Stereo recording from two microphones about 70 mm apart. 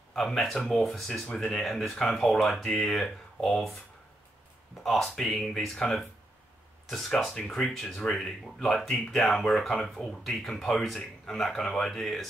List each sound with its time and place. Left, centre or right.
0.1 s speech: centre
4.8 s speech: centre